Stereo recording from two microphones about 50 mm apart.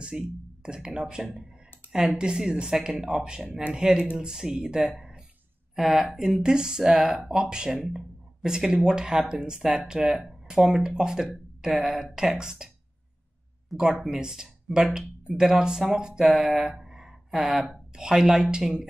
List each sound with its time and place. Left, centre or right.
0.0 s speech: centre
4.9 s a sound: centre
5.8 s speech: centre
16.3 s speech: centre